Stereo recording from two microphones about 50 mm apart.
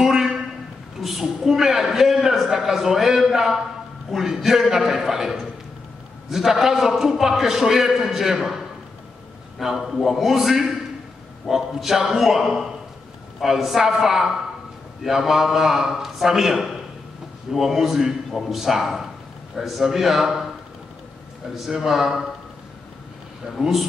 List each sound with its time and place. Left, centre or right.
0.0 s a sound: centre
1.0 s a man's voice: centre
21.5 s a man's voice: centre
23.6 s a man's voice: centre